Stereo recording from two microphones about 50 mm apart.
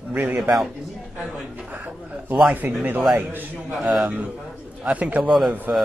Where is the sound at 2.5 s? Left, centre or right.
Right.